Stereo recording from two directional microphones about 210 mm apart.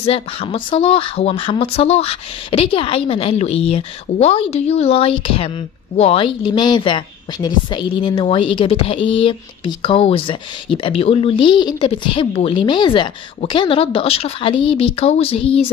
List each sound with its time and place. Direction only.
0.0 s a woman's voice: 25° left (ahead or behind)